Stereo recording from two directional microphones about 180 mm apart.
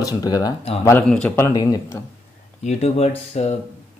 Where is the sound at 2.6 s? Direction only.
35° left (ahead or behind).